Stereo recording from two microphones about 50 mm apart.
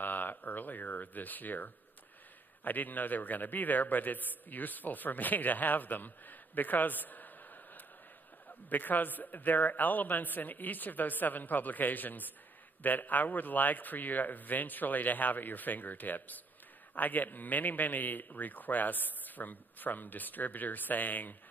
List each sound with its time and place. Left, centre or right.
0.0 s a man's voice: left